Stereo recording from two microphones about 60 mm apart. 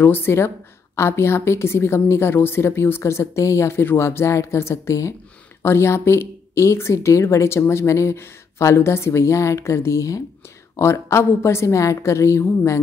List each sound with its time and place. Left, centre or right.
0.0 s speech: left
5.6 s speech: left
10.8 s speech: left